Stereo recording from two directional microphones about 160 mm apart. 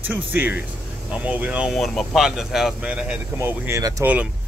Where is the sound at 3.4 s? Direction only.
15° right (ahead or behind).